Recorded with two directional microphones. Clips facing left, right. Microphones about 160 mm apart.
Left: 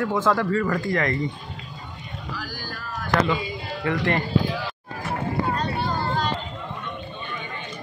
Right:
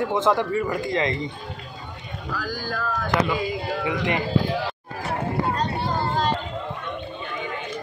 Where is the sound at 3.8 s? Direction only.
15° right (ahead or behind).